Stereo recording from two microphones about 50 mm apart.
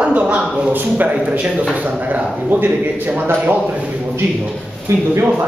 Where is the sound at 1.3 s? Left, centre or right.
Right.